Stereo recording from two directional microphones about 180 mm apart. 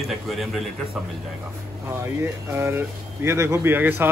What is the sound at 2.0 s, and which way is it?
Speech, 15° right (ahead or behind).